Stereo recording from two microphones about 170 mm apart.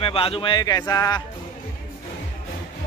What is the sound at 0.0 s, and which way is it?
Speech, 35° left (ahead or behind).